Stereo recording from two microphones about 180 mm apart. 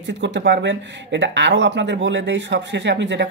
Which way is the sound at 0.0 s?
90° right.